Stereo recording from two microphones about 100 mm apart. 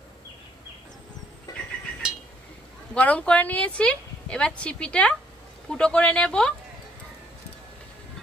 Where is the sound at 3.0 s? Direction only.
15° left (ahead or behind).